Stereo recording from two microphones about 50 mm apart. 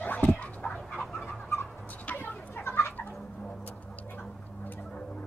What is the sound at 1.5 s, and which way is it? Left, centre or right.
Dog, left.